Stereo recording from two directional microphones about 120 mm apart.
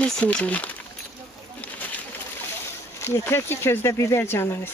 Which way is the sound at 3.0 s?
20° left (ahead or behind).